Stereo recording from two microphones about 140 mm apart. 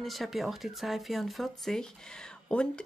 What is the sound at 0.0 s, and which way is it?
Speech, centre (ahead or behind).